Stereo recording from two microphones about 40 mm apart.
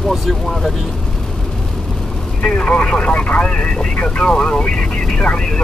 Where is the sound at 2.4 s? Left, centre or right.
Left.